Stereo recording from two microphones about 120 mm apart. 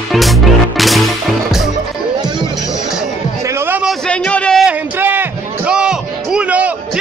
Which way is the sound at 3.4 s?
20° right (ahead or behind).